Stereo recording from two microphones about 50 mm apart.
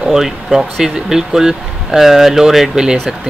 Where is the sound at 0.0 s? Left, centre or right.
Centre.